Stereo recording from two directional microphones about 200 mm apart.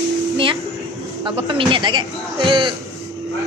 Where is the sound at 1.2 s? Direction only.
25° right (ahead or behind).